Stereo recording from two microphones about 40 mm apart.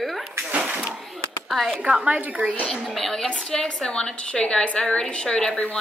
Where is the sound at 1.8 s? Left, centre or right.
Right.